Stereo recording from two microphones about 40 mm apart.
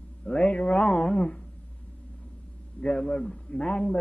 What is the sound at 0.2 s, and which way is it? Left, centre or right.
A man's voice, left.